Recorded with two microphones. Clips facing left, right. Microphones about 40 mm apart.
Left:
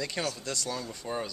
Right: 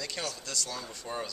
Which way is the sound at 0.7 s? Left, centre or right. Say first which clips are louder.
Left 3 dB; centre.